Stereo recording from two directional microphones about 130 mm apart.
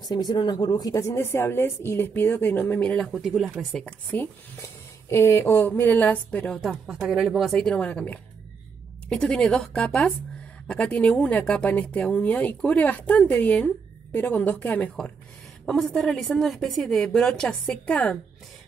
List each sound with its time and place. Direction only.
0.0 s a woman's voice: 30° left (ahead or behind); by 3.5 s centre (ahead or behind)
3.5 s speech: 10° left (ahead or behind)
6.6 s a woman's voice: 5° right (ahead or behind)